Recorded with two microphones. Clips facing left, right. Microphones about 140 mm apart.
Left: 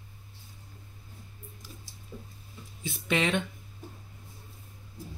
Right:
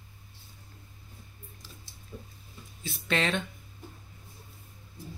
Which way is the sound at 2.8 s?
15° left (ahead or behind).